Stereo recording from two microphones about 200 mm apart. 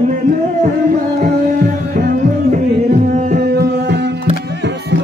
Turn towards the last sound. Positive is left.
turn(degrees=-50)  # may be behind; listen again after turning